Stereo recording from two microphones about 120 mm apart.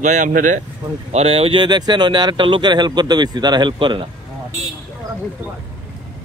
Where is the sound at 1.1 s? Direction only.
55° right (ahead or behind).